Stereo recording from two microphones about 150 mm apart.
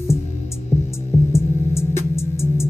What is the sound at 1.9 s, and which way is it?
Music, 15° left (ahead or behind).